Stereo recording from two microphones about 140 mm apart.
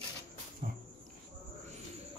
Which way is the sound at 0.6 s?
70° right (ahead or behind).